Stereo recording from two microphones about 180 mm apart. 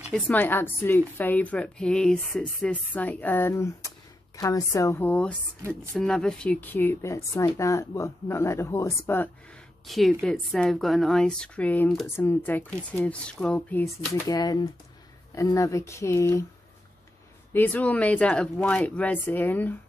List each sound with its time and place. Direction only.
0.1 s a woman's voice: 10° left (ahead or behind)
9.8 s a woman's voice: centre (ahead or behind)
14.2 s a woman's voice: 20° left (ahead or behind)
17.5 s a woman's voice: 10° left (ahead or behind)